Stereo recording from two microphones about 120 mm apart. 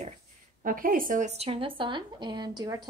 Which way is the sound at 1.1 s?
70° right (ahead or behind).